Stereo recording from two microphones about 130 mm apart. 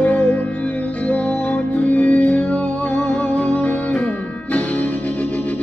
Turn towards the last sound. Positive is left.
turn(degrees=10)  # may be behind; listen again after turning